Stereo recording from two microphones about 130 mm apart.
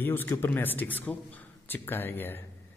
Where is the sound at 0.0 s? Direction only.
15° left (ahead or behind).